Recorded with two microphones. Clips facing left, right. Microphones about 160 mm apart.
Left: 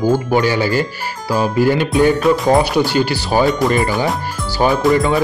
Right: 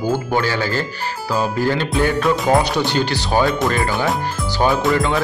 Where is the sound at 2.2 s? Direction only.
Centre (ahead or behind).